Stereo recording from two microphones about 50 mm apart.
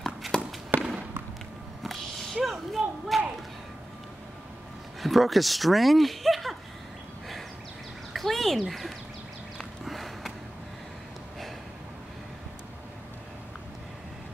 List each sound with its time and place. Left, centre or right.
0.3 s a sound: centre
0.7 s fireworks: right
1.8 s whip: centre
5.0 s speech: centre
8.1 s a sound: centre
9.8 s sniff: centre